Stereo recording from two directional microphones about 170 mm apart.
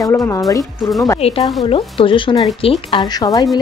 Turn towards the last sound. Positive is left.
turn(degrees=25)  # may be behind; listen again after turning